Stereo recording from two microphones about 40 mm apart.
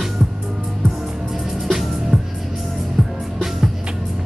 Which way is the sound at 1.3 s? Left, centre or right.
Centre.